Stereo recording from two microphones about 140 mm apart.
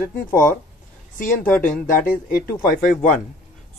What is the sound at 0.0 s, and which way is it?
Speech, 15° left (ahead or behind).